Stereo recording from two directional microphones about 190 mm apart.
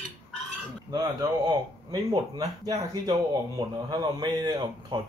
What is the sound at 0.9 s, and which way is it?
Speech, 20° right (ahead or behind).